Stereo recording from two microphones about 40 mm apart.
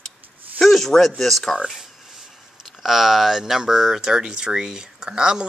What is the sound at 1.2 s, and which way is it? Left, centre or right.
Speech, centre.